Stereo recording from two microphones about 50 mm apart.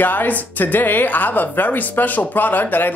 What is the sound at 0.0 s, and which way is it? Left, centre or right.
Speech, left.